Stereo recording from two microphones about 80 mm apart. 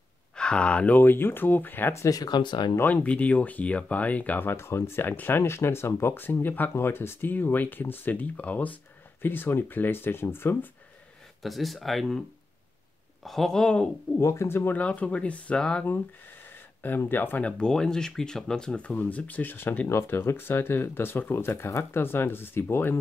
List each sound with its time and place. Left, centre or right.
0.4 s speech: centre; by 2.0 s left
2.0 s speech: left
2.8 s speech: centre
11.4 s speech: centre
13.2 s speech: centre
14.2 s speech: left
14.8 s speech: centre
16.4 s a sound: left
17.1 s speech: left